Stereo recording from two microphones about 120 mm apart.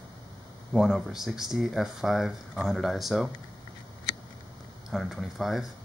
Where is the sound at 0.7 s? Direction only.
Centre (ahead or behind).